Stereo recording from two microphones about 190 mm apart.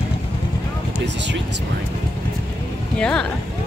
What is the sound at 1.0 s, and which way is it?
Speech, 65° right (ahead or behind).